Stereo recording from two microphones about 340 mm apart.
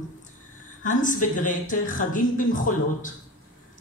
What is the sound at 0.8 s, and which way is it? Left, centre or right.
Speech, left.